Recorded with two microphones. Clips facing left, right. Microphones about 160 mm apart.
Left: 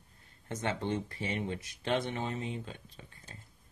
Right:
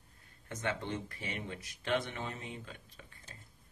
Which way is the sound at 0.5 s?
30° left (ahead or behind).